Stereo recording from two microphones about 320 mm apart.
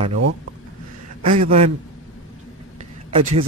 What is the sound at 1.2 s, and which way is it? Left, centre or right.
Speech, right.